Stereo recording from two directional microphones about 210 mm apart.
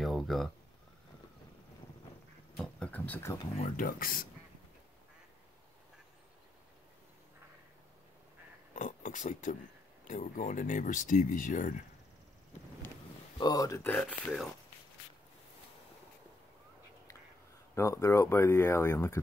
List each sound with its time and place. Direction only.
0.0 s a sound: centre (ahead or behind)
2.5 s a sound: 5° left (ahead or behind)
3.7 s speech: 40° left (ahead or behind)
8.7 s speech: 35° left (ahead or behind)
13.4 s speech: 15° left (ahead or behind)
17.7 s speech: 15° left (ahead or behind)